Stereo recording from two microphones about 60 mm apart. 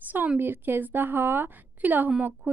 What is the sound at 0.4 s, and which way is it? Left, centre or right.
A woman's voice, right.